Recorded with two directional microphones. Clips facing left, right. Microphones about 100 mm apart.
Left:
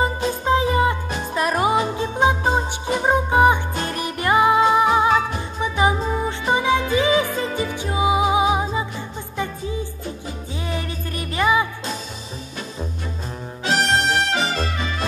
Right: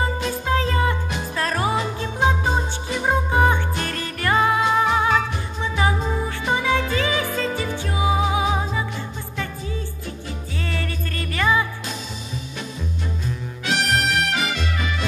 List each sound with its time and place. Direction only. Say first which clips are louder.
0.0 s music: left 3 dB; 15° left (ahead or behind)
10.6 s music: left 1 dB; 15° left (ahead or behind)
13.7 s music: left 3 dB; 35° left (ahead or behind)